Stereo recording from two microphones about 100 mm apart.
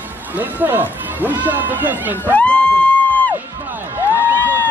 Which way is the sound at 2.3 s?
15° left (ahead or behind).